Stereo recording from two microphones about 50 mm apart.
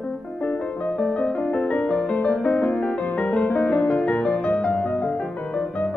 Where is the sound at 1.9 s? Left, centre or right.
Left.